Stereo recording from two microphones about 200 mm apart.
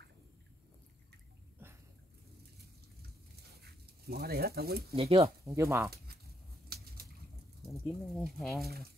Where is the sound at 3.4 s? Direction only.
55° right (ahead or behind).